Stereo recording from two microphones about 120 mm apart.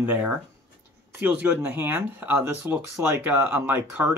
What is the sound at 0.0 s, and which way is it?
Speech, 15° right (ahead or behind).